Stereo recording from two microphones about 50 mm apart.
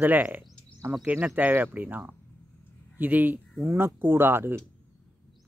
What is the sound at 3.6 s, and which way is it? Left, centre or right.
Speech, right.